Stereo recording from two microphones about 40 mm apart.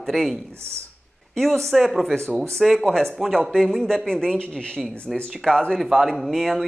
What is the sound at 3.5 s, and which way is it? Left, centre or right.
A man's voice, centre.